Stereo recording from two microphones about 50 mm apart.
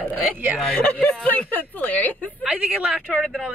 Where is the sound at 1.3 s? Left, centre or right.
Left.